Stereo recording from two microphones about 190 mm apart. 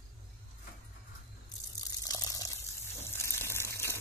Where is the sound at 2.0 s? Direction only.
20° left (ahead or behind).